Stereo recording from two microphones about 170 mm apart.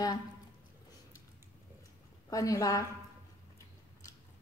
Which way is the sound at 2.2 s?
20° left (ahead or behind).